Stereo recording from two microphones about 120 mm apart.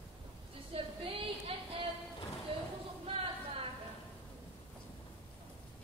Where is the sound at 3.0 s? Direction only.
55° right (ahead or behind).